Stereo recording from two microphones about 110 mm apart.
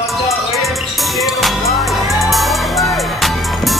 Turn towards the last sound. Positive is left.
turn(degrees=0)  # may be behind; listen again after turning